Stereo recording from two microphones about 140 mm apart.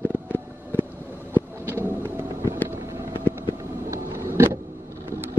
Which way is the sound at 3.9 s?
15° right (ahead or behind).